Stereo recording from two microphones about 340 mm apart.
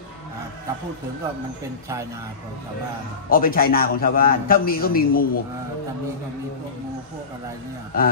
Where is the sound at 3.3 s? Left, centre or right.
Left.